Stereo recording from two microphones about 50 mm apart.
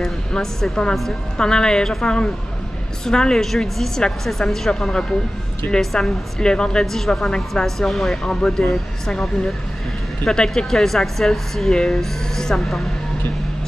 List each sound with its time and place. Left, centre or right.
0.3 s speech: centre
5.6 s a woman's voice: left
6.4 s speech: centre